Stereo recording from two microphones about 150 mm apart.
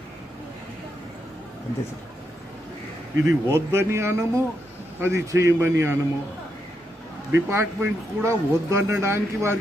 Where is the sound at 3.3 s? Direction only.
15° right (ahead or behind).